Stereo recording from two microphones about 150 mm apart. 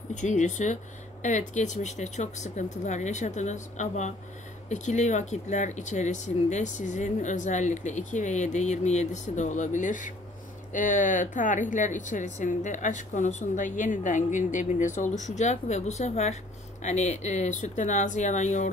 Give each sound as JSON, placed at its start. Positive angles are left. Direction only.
{"t": 0.1, "sound": "a woman's voice", "side_deg": 55}